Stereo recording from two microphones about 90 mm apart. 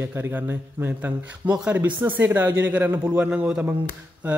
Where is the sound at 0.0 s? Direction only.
20° right (ahead or behind).